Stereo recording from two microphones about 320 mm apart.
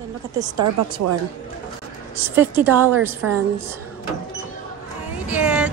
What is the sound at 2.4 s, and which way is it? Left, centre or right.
Speech, centre.